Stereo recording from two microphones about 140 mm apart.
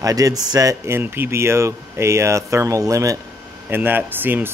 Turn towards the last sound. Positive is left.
turn(degrees=-15)  # may be behind; listen again after turning